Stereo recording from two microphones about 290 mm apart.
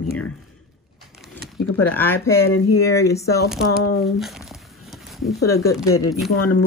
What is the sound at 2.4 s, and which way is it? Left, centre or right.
Speech, left.